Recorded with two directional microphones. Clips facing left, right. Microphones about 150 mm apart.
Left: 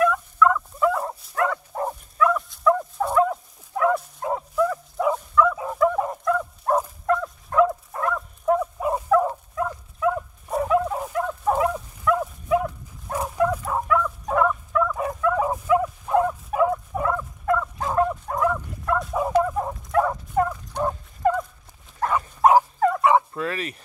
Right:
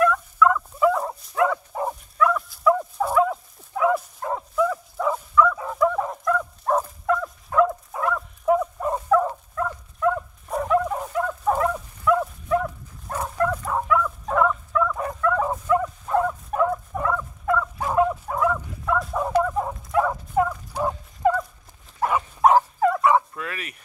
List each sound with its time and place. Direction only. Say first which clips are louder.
0.0 s dog: even; centre (ahead or behind)
17.7 s dog: right 1 dB; 5° right (ahead or behind)
22.8 s fowl: even; centre (ahead or behind)
23.0 s dog: left 1 dB; 25° left (ahead or behind)